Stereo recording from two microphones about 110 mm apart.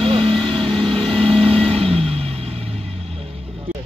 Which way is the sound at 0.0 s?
55° right (ahead or behind).